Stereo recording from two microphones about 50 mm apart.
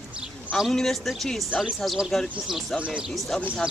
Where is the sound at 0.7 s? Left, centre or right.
Centre.